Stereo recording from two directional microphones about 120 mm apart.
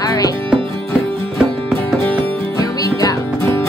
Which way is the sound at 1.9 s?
20° left (ahead or behind).